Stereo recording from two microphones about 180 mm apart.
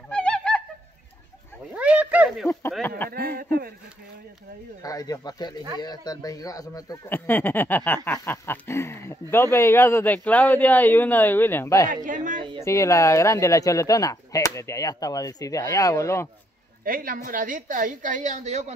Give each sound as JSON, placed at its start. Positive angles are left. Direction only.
{"t": 0.1, "sound": "a sound", "side_deg": 5}
{"t": 1.8, "sound": "a sound", "side_deg": -5}
{"t": 3.0, "sound": "speech", "side_deg": 15}
{"t": 4.8, "sound": "speech", "side_deg": 20}
{"t": 11.9, "sound": "a woman's voice", "side_deg": -45}
{"t": 12.6, "sound": "speech", "side_deg": 15}
{"t": 16.8, "sound": "a woman's voice", "side_deg": -50}